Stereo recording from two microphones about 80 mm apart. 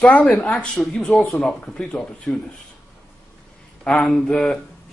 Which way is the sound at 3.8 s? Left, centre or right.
Centre.